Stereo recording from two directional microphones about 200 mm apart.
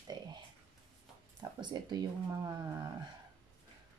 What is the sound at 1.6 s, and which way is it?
Speech, 20° right (ahead or behind).